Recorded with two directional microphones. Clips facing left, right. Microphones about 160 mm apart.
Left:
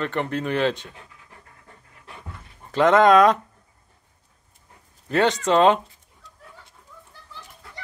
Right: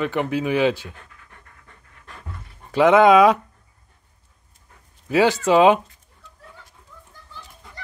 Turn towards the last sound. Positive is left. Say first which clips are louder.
# right 1 dB
turn(degrees=0)  # may be behind; listen again after turning